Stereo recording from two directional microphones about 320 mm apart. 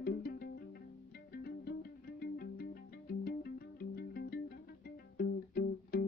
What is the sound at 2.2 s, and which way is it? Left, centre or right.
Music, left.